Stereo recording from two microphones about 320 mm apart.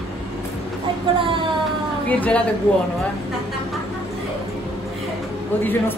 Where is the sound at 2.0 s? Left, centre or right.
Centre.